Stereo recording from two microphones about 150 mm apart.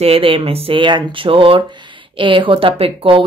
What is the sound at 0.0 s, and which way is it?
Speech, 40° right (ahead or behind).